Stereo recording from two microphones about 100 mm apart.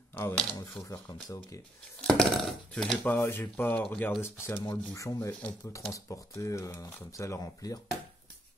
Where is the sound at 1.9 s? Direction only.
5° left (ahead or behind).